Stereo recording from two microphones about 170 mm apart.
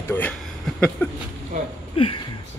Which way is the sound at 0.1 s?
10° left (ahead or behind).